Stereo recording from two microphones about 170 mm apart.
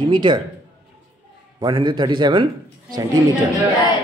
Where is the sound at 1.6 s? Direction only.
25° right (ahead or behind).